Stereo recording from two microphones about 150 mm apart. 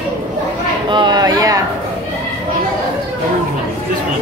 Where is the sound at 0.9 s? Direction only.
30° right (ahead or behind).